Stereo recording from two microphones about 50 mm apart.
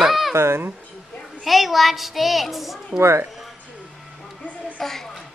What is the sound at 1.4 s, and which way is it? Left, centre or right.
A child's voice, centre.